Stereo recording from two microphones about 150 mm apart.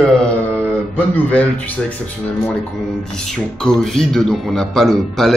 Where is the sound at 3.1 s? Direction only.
5° left (ahead or behind).